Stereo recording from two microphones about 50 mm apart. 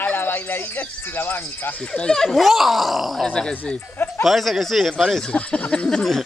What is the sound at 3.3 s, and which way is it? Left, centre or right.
Speech, left.